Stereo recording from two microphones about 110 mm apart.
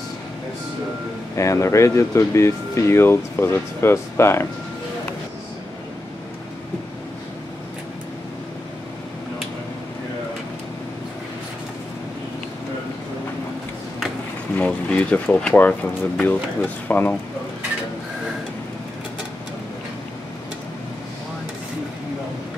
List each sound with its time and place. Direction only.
1.3 s speech: 30° left (ahead or behind)
14.6 s speech: 10° left (ahead or behind)